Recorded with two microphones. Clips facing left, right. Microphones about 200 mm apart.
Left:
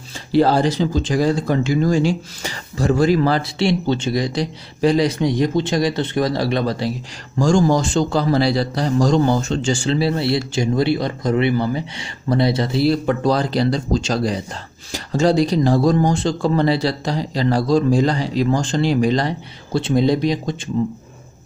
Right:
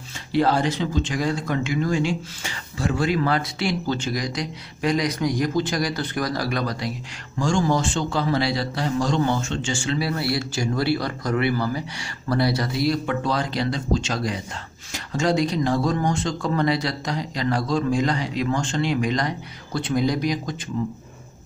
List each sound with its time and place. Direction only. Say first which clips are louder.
0.3 s a man's voice: left 5 dB; 35° left (ahead or behind)
7.3 s a man's voice: left 6 dB; 40° left (ahead or behind)